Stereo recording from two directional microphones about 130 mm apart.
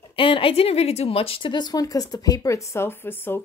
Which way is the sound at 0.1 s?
45° left (ahead or behind).